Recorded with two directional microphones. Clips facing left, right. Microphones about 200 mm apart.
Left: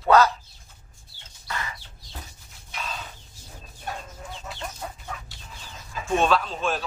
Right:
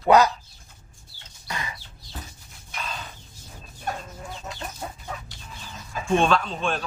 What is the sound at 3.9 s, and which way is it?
Chicken, 45° right (ahead or behind).